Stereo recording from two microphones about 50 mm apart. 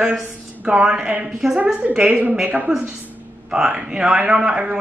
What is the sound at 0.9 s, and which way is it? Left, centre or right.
Speech, right.